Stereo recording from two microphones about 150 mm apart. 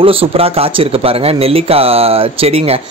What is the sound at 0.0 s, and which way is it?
Speech, 40° right (ahead or behind).